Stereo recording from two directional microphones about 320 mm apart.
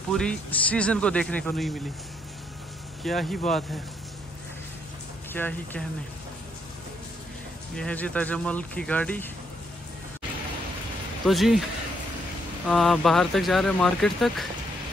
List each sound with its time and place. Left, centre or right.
0.1 s speech: centre
3.0 s speech: centre
5.3 s speech: centre
7.7 s speech: centre
11.2 s speech: centre
12.6 s speech: centre